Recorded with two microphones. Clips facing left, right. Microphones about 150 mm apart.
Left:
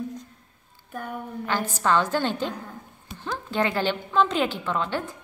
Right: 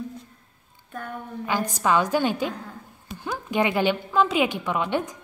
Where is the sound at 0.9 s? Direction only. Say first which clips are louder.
Left 1 dB; 5° left (ahead or behind).